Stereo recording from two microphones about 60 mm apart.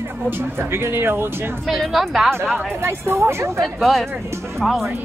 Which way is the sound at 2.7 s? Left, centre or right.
Right.